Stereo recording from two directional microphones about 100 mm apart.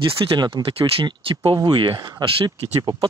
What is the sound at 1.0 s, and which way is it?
Speech, 60° right (ahead or behind).